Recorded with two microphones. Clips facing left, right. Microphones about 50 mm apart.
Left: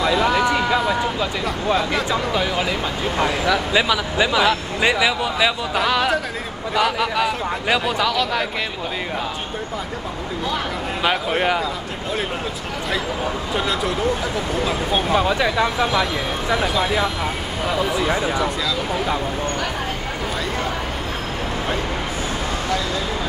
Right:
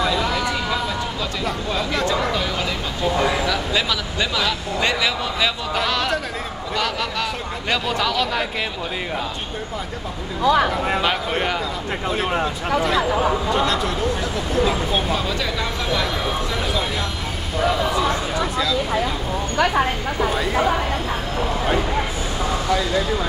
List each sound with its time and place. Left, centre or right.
0.1 s a sound: centre
3.3 s speech: centre
10.5 s speech: right
11.0 s speech: centre
13.5 s speech: centre
15.0 s speech: left
16.5 s speech: centre